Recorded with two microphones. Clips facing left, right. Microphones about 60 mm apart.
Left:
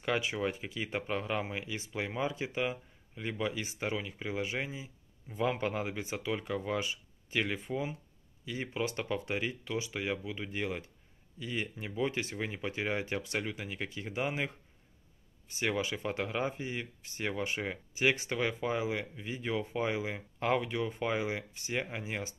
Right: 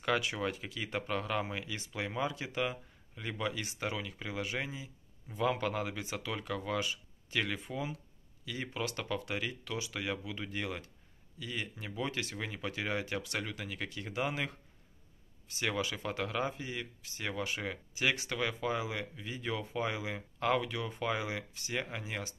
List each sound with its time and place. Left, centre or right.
0.0 s speech: left